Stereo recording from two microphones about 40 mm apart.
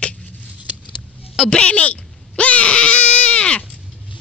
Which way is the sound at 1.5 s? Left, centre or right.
Left.